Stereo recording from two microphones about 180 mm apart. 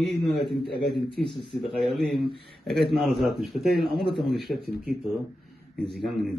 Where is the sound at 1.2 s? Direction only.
25° left (ahead or behind).